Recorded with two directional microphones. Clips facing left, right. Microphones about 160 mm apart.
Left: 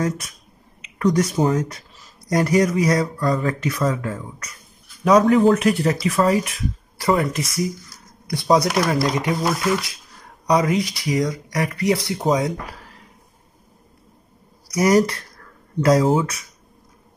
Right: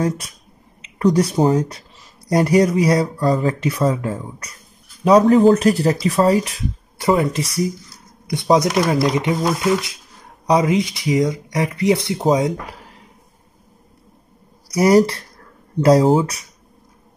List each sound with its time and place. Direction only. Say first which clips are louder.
0.9 s speech: right 3 dB; 30° right (ahead or behind)
14.7 s speech: right 3 dB; 30° right (ahead or behind)